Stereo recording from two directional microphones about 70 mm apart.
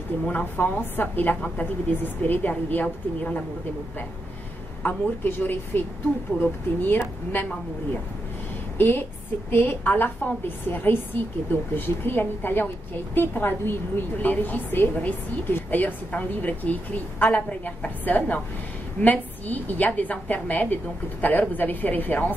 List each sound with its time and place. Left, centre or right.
0.3 s a woman's voice: centre
4.8 s a woman's voice: left
8.7 s a woman's voice: left